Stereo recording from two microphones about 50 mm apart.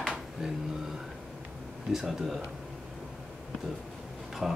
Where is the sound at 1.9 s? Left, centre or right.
Centre.